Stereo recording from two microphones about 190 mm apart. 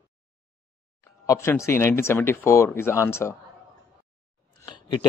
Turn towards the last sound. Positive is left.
turn(degrees=25)  # may be behind; listen again after turning